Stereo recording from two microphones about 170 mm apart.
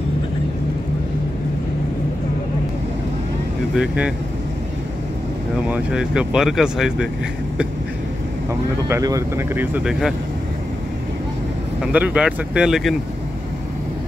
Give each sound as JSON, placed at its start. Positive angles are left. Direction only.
{"t": 3.7, "sound": "speech", "side_deg": -5}
{"t": 5.7, "sound": "speech", "side_deg": -5}
{"t": 8.8, "sound": "speech", "side_deg": -20}
{"t": 9.8, "sound": "speech", "side_deg": 0}
{"t": 11.8, "sound": "speech", "side_deg": -10}